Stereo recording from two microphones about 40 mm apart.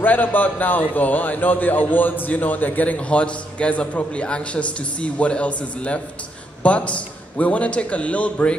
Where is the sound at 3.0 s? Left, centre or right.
Left.